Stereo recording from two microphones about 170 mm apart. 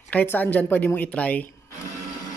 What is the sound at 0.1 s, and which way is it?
Speech, 10° left (ahead or behind).